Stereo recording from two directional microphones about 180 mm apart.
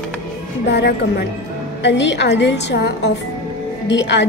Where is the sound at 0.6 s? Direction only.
75° left (ahead or behind).